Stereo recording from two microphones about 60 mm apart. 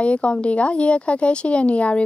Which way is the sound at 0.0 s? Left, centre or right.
Centre.